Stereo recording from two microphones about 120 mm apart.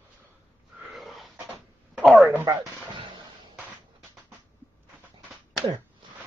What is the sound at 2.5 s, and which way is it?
Music, 40° right (ahead or behind).